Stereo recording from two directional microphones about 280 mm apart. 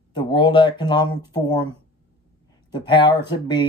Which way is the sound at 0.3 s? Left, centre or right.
Centre.